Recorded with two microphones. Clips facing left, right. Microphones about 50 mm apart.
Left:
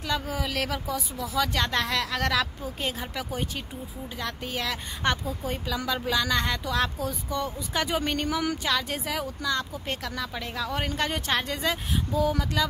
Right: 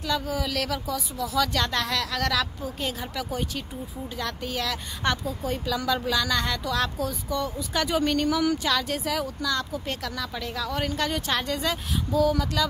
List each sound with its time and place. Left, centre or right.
0.0 s a woman's voice: left